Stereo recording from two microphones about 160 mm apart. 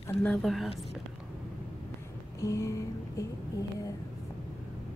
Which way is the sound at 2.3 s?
20° left (ahead or behind).